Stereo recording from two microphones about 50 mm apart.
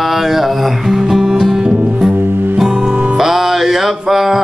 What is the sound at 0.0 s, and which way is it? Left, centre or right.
Music, centre.